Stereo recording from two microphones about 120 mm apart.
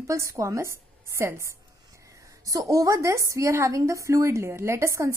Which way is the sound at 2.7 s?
30° right (ahead or behind).